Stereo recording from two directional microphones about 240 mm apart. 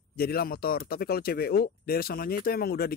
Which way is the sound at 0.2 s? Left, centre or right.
Left.